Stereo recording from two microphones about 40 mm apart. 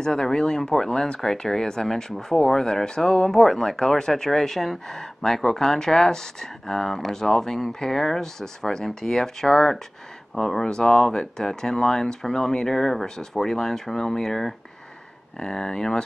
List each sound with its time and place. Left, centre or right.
0.0 s speech: centre